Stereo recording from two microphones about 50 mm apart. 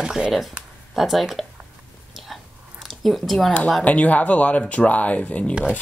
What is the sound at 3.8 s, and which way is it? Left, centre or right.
Speech, left.